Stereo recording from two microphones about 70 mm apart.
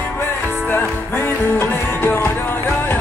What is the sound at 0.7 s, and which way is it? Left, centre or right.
Music, left.